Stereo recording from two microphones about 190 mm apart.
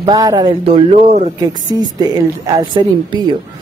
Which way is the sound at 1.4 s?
20° right (ahead or behind).